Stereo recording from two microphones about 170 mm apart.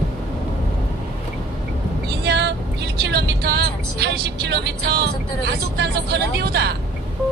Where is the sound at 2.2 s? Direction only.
75° right (ahead or behind).